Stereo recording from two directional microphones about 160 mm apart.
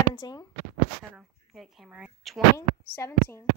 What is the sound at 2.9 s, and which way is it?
Speech, 15° left (ahead or behind).